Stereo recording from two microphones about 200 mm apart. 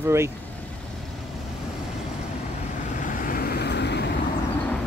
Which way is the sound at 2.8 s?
40° left (ahead or behind).